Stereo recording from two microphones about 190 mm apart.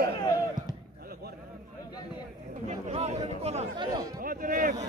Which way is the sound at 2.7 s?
35° right (ahead or behind).